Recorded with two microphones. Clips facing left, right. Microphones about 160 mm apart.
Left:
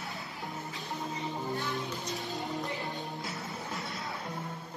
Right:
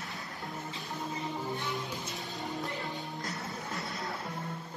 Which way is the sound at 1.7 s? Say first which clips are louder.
Left 2 dB; centre (ahead or behind).